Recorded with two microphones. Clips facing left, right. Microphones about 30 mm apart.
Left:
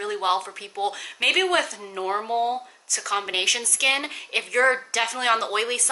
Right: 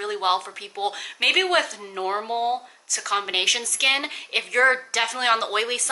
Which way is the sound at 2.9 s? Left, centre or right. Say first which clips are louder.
Right 1 dB; centre.